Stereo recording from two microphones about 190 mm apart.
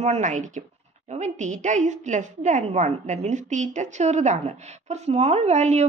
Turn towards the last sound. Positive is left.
turn(degrees=-35)  # may be behind; listen again after turning